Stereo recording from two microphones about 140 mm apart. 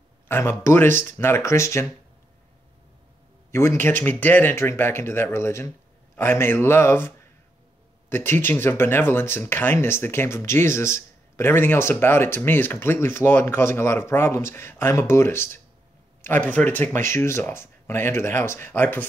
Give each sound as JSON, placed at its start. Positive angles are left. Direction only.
{"t": 0.3, "sound": "speech", "side_deg": 15}
{"t": 3.5, "sound": "speech", "side_deg": 15}